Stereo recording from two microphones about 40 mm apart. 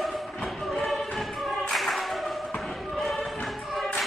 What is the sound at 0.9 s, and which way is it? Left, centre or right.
Music, centre.